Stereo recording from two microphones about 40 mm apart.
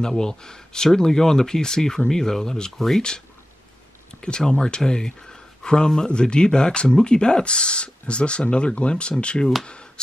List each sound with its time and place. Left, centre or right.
0.2 s speech: centre
4.2 s speech: left